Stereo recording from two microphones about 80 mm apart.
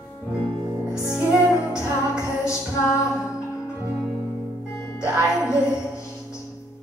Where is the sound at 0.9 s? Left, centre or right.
Left.